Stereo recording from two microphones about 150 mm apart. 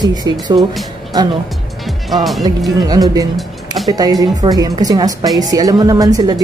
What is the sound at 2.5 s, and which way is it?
Speech, 25° right (ahead or behind).